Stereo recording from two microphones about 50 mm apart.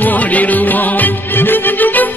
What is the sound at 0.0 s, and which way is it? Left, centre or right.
Music, left.